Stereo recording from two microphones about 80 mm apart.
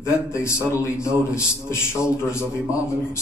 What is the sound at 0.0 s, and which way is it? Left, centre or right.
A man's voice, left.